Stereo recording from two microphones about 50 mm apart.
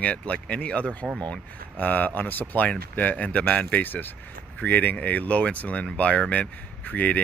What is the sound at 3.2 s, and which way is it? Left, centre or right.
Speech, left.